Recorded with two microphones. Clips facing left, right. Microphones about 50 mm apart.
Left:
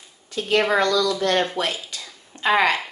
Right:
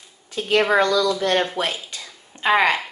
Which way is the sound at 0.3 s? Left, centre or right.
Centre.